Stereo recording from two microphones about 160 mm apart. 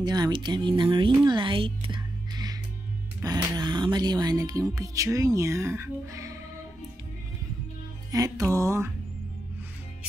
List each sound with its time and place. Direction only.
0.0 s speech: 25° right (ahead or behind)
8.1 s speech: 20° right (ahead or behind)